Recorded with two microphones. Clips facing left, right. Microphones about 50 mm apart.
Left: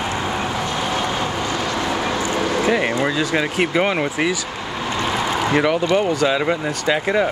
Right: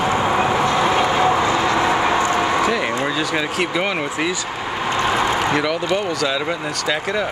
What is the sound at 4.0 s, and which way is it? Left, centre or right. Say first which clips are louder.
Speech: left 2 dB; centre.